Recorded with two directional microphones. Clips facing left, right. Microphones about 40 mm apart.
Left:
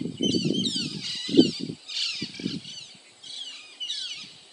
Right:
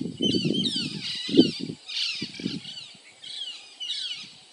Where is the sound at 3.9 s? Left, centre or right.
Centre.